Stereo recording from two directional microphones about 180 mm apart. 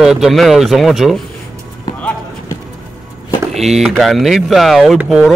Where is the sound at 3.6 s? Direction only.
Centre (ahead or behind).